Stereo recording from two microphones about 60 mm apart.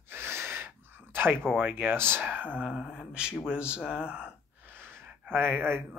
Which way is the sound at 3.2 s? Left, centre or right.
Centre.